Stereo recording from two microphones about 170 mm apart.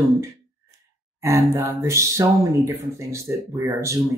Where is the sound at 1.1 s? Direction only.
20° right (ahead or behind).